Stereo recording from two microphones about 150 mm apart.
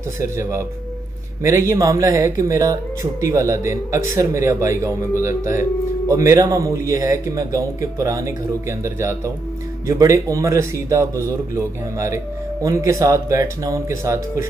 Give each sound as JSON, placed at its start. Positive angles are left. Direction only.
{"t": 0.2, "sound": "speech", "side_deg": -20}
{"t": 6.0, "sound": "speech", "side_deg": -20}